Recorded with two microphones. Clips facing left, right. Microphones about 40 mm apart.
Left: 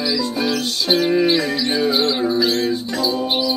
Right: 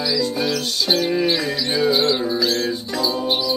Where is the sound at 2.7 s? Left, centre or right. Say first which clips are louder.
Left 2 dB; centre.